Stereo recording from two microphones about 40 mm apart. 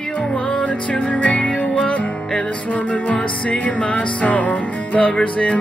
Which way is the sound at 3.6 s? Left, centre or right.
Left.